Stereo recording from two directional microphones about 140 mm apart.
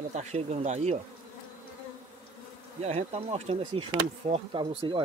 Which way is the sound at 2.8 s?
50° right (ahead or behind).